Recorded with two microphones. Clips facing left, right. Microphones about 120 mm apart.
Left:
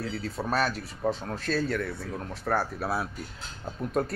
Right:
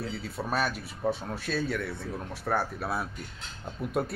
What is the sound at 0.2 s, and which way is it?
Speech, centre (ahead or behind).